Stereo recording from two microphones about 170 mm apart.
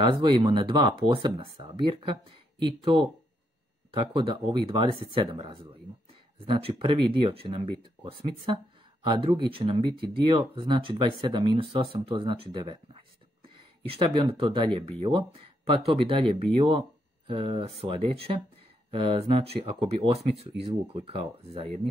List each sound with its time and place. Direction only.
0.0 s speech: 30° right (ahead or behind)